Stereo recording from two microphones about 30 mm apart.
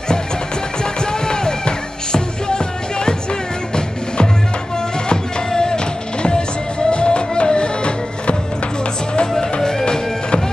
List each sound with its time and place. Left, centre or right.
1.2 s music: left
5.1 s music: left
9.3 s music: centre